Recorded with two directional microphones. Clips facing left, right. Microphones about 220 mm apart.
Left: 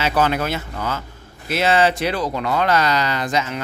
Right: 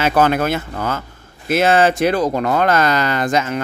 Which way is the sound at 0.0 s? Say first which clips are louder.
Right 4 dB; 50° right (ahead or behind).